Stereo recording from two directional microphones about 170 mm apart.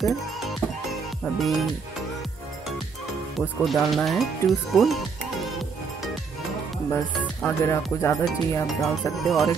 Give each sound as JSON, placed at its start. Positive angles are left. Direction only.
{"t": 0.0, "sound": "music", "side_deg": 0}
{"t": 1.4, "sound": "speech", "side_deg": 0}
{"t": 3.3, "sound": "speech", "side_deg": 0}
{"t": 7.4, "sound": "speech", "side_deg": 15}
{"t": 8.6, "sound": "speech", "side_deg": 0}